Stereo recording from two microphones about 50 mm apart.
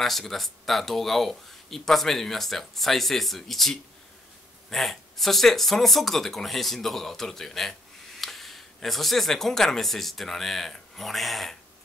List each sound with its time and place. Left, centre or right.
0.0 s speech: centre